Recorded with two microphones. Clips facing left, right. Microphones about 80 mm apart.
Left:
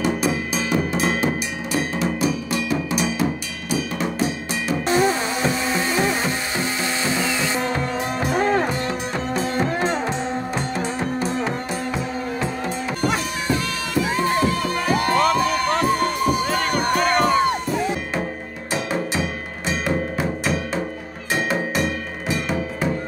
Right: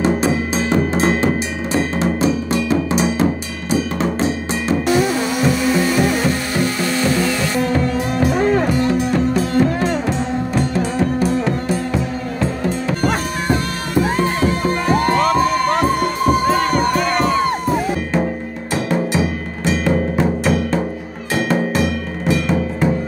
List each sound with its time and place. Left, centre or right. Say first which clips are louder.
0.0 s drum: right 5 dB; right
4.8 s music: right 1 dB; left
8.9 s music: right 8 dB; left
13.0 s music: right 2 dB; right
17.0 s music: right 1 dB; left